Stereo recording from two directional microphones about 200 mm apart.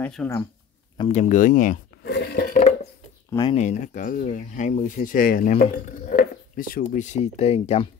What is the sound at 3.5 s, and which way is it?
Speech, 35° left (ahead or behind).